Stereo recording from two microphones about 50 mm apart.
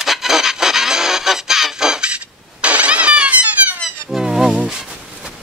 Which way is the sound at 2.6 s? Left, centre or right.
Right.